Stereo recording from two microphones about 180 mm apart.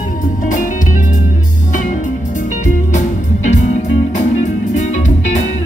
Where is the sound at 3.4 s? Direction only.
40° left (ahead or behind).